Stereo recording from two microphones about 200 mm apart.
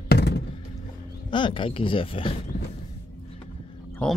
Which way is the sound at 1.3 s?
25° left (ahead or behind).